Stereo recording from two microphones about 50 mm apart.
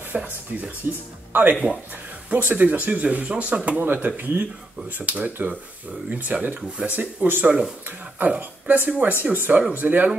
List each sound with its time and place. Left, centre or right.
0.1 s speech: right
3.8 s speech: right